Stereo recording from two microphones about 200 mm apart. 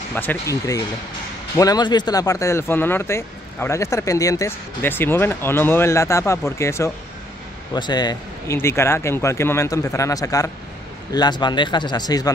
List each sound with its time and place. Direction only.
0.1 s speech: 10° left (ahead or behind)